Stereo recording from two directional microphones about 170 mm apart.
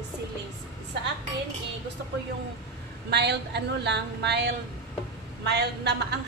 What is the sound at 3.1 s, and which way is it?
A woman's voice, 80° right.